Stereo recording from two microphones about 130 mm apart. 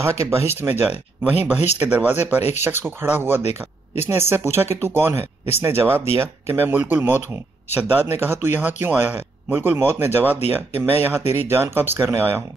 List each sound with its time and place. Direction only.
0.0 s speech: 20° right (ahead or behind)
3.4 s speech: 55° left (ahead or behind)
4.1 s speech: 20° right (ahead or behind)